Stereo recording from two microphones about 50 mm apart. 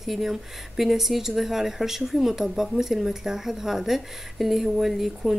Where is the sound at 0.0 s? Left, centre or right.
Centre.